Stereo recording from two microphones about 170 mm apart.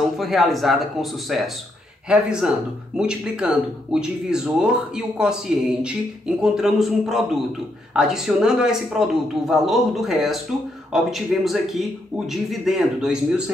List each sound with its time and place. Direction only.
0.2 s speech: centre (ahead or behind)